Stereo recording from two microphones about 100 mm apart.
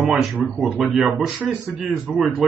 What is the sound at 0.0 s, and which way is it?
Speech, 5° right (ahead or behind).